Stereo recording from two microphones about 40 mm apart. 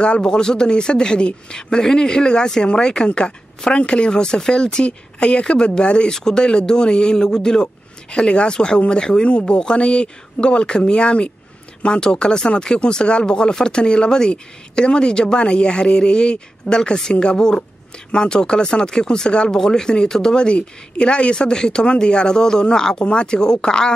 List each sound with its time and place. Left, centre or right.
0.0 s speech: left